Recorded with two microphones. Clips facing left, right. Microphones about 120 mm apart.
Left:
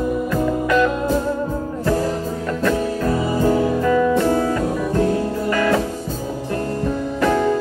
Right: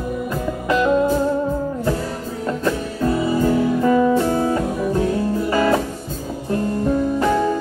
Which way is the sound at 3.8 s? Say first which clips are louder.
Right 1 dB; 25° right (ahead or behind).